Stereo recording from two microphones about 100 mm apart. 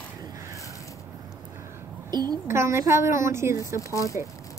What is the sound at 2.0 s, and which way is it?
Speech, 45° right (ahead or behind).